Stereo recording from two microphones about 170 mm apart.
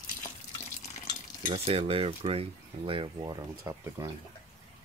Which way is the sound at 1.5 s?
35° right (ahead or behind).